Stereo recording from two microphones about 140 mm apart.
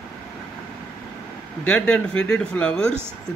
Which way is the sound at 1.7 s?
10° left (ahead or behind).